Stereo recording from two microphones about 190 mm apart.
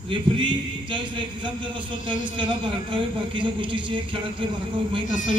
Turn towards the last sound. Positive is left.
turn(degrees=-25)  # may be behind; listen again after turning